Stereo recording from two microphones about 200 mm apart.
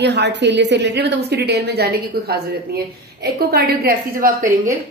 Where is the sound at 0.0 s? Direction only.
60° right (ahead or behind).